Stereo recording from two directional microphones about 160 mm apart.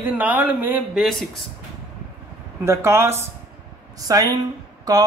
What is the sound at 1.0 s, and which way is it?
Speech, centre (ahead or behind).